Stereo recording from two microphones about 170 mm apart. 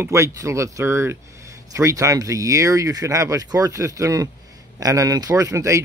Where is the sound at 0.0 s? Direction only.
15° right (ahead or behind).